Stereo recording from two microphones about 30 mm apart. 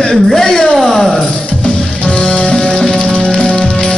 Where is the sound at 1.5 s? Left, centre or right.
Left.